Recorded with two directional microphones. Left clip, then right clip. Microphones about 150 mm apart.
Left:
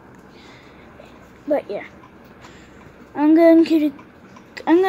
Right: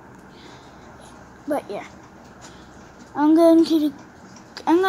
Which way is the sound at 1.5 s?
15° right (ahead or behind).